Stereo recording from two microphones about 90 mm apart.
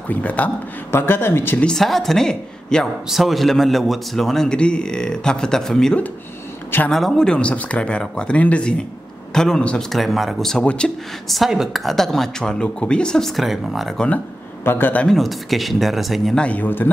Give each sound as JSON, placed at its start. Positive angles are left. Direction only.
{"t": 0.1, "sound": "speech", "side_deg": 15}
{"t": 1.7, "sound": "a man's voice", "side_deg": 5}
{"t": 11.2, "sound": "a man's voice", "side_deg": 0}
{"t": 13.9, "sound": "speech", "side_deg": 15}
{"t": 15.0, "sound": "a man's voice", "side_deg": 0}
{"t": 16.3, "sound": "speech", "side_deg": 15}